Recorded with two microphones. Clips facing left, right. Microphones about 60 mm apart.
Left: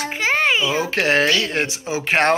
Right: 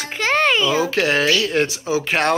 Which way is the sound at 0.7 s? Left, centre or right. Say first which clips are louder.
Even; left.